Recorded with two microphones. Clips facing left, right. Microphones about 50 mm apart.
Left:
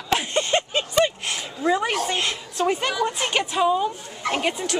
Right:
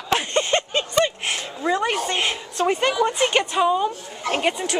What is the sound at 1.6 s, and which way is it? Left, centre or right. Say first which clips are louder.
A woman's voice: even; centre.